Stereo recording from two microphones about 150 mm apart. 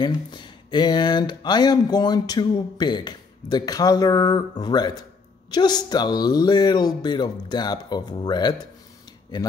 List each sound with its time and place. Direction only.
0.0 s speech: 30° left (ahead or behind)